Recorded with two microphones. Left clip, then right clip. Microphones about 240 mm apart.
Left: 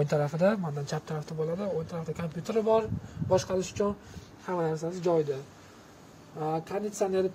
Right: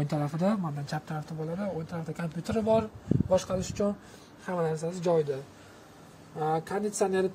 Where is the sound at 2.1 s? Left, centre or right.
Centre.